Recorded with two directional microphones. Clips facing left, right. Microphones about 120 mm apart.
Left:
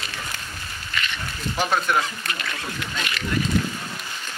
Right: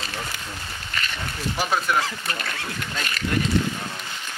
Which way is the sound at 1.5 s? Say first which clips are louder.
Left 2 dB; centre (ahead or behind).